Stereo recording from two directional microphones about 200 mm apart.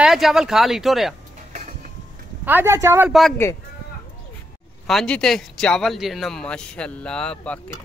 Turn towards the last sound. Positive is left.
turn(degrees=5)  # may be behind; listen again after turning